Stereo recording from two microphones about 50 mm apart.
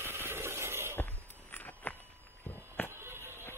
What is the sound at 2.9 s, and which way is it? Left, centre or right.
Music, right.